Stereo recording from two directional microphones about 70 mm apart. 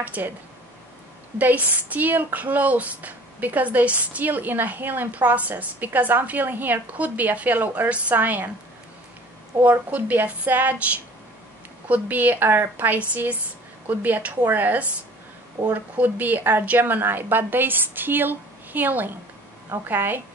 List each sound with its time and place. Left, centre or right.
0.0 s speech: right
1.4 s speech: right
9.6 s speech: right
11.9 s a woman's voice: right